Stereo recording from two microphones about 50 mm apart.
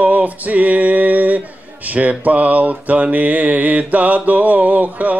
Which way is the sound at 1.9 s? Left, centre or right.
Right.